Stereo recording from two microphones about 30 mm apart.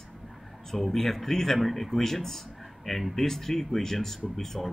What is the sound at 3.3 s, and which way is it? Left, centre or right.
Speech, centre.